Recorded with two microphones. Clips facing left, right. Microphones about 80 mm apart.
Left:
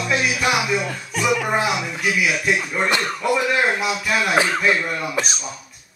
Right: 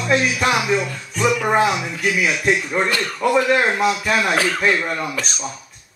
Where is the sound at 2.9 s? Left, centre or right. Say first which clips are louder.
Left 1 dB; left.